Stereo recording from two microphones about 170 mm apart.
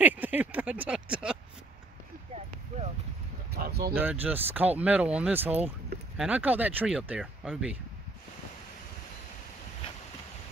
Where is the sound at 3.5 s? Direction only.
65° right (ahead or behind).